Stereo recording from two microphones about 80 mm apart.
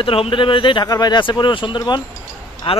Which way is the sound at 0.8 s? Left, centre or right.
Left.